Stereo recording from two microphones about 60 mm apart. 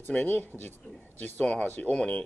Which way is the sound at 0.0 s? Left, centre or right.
Left.